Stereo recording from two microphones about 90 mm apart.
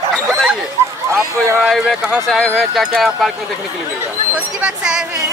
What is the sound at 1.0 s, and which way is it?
Speech, 30° right (ahead or behind).